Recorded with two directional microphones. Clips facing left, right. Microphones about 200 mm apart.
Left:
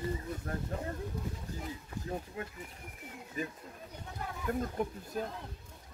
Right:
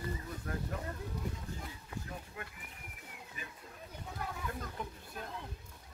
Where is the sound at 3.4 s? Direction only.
40° left (ahead or behind).